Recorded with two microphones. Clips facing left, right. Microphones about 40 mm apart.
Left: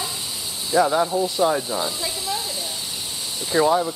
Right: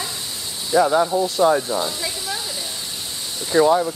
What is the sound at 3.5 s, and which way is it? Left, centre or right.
Speech, centre.